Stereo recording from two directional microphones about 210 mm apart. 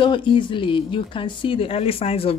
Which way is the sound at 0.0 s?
25° left (ahead or behind).